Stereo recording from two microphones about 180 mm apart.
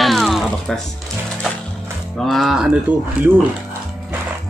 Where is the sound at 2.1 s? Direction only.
Centre (ahead or behind).